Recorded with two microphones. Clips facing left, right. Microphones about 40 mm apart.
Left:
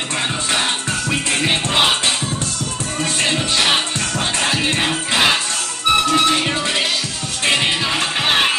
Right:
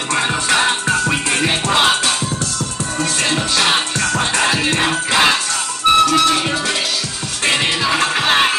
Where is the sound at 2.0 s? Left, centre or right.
Left.